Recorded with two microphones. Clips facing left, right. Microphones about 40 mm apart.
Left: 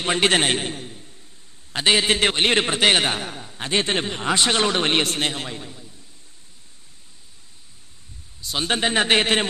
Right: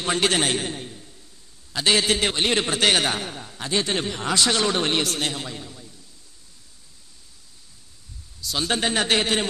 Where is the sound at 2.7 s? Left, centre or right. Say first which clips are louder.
Left 2 dB; left.